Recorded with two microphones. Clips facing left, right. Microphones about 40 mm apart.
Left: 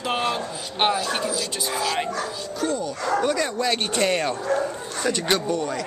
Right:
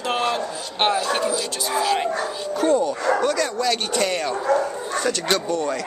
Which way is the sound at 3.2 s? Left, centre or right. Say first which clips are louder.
Right 2 dB; centre.